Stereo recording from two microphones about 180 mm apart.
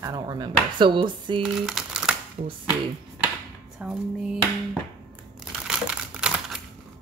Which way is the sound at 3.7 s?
5° right (ahead or behind).